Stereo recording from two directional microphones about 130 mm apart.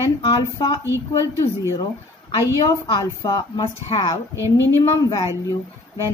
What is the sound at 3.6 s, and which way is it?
Speech, 45° left (ahead or behind).